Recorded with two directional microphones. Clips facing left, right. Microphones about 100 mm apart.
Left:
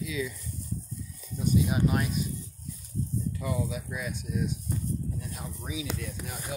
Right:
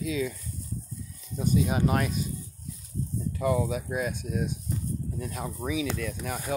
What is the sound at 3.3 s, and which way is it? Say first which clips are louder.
Speech: right 9 dB; 50° right (ahead or behind).